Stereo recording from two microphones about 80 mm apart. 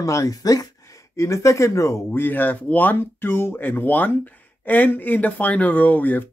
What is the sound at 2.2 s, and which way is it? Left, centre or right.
Speech, left.